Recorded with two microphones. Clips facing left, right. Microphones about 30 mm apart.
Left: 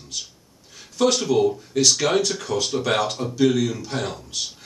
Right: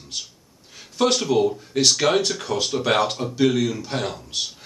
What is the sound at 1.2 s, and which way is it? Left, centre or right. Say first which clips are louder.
Speech: even; centre.